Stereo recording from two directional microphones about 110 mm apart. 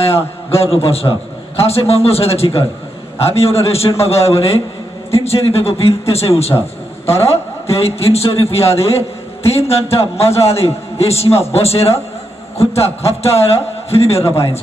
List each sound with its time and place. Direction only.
0.0 s a man's voice: 65° left (ahead or behind)
14.2 s a man's voice: 25° left (ahead or behind)